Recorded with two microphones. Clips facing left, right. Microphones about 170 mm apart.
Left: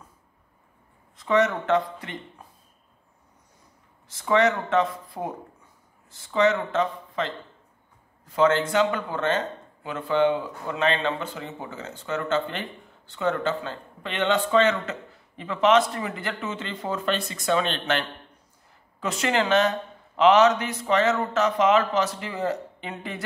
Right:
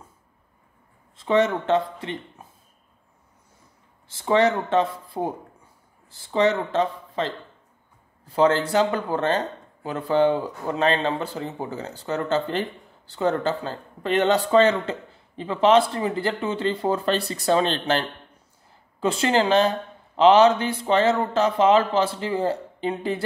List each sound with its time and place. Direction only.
1.1 s speech: 30° right (ahead or behind)
4.1 s speech: 30° right (ahead or behind)